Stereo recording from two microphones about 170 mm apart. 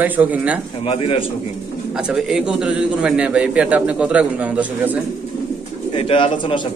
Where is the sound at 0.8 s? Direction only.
35° left (ahead or behind).